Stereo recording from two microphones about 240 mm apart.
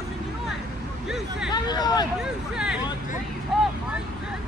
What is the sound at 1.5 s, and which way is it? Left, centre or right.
Hubbub, centre.